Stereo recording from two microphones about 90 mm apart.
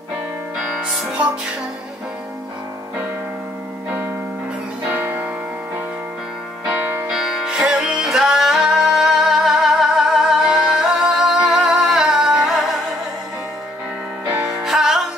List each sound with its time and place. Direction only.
4.8 s music: 20° right (ahead or behind)
7.1 s music: 5° right (ahead or behind)
14.5 s music: 5° right (ahead or behind)